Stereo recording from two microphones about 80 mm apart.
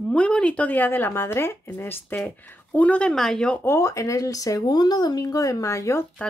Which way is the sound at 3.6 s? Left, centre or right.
Left.